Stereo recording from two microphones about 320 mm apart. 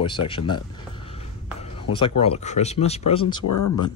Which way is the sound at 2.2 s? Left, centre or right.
Centre.